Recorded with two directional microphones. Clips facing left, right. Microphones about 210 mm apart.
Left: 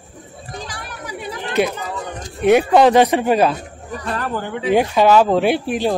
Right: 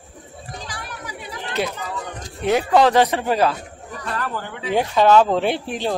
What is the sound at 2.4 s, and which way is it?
Speech, 15° left (ahead or behind).